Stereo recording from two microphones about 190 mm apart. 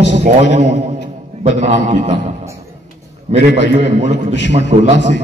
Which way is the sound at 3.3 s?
35° right (ahead or behind).